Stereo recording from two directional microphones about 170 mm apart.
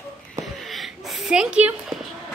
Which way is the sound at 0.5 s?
Centre (ahead or behind).